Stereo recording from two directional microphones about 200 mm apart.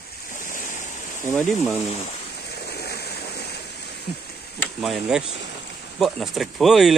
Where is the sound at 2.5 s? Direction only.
55° left (ahead or behind).